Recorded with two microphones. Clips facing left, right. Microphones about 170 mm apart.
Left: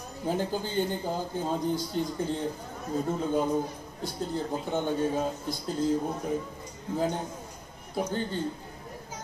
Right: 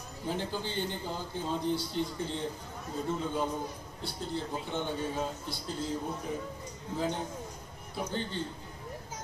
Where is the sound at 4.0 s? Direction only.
45° left (ahead or behind).